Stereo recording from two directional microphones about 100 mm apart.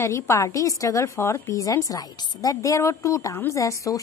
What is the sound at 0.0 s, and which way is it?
A woman's voice, 30° left (ahead or behind).